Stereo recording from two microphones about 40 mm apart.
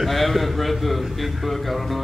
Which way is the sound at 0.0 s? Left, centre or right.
Centre.